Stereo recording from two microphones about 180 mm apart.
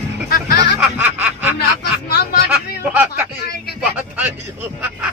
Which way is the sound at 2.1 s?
60° left (ahead or behind).